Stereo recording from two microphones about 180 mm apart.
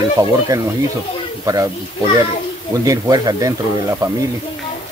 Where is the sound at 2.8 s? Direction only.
20° right (ahead or behind).